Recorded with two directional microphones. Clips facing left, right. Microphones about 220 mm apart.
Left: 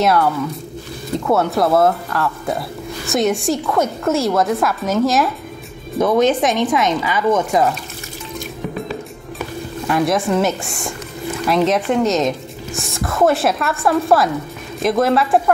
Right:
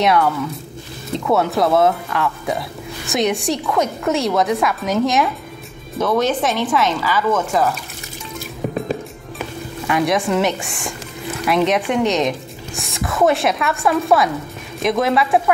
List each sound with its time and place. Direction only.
1.1 s speech: centre (ahead or behind)
5.9 s speech: 15° left (ahead or behind)
9.8 s speech: centre (ahead or behind)